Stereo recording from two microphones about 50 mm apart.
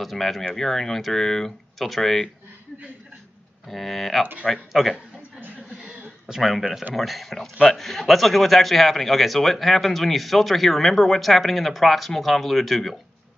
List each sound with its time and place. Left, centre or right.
0.0 s a man's voice: centre
3.6 s a man's voice: centre
5.4 s chuckle: right
6.2 s a man's voice: centre